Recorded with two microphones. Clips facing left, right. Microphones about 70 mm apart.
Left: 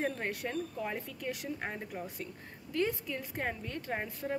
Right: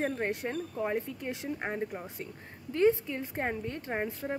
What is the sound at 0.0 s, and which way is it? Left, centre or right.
A woman's voice, right.